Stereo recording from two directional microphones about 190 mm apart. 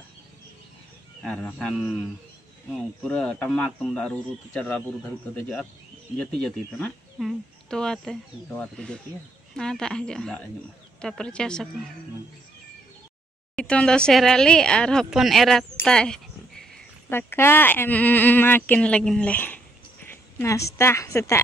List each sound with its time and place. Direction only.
1.2 s speech: 5° left (ahead or behind)
3.0 s speech: 5° left (ahead or behind)
13.6 s a woman's voice: 5° left (ahead or behind)